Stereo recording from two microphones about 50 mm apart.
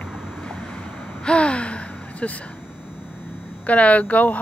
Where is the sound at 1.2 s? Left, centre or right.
Left.